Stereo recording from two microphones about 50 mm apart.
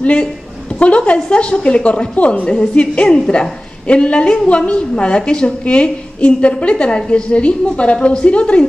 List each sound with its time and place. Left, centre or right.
0.0 s a woman's voice: left